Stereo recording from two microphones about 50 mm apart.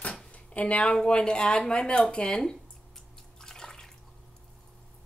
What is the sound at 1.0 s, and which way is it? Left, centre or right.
Speech, centre.